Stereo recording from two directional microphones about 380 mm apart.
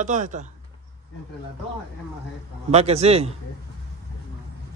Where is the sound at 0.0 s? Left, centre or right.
Centre.